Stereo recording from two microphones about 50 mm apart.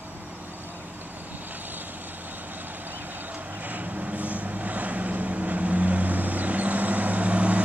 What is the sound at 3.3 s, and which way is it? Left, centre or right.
Vehicle, right.